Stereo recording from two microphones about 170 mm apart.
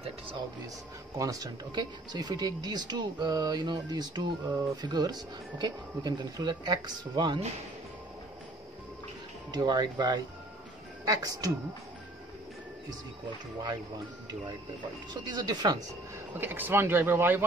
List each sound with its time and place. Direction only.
1.1 s speech: 20° right (ahead or behind)
9.5 s speech: 25° right (ahead or behind)
15.2 s speech: 25° right (ahead or behind)
16.3 s speech: 10° right (ahead or behind)